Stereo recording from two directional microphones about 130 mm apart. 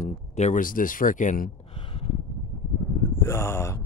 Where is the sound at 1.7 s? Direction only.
45° left (ahead or behind).